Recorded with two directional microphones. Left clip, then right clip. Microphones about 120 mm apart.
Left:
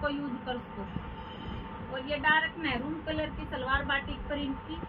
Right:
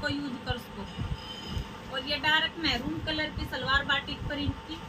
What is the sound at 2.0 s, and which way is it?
Speech, 20° right (ahead or behind).